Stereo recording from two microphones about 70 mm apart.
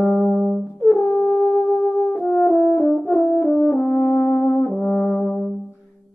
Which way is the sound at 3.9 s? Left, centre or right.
Left.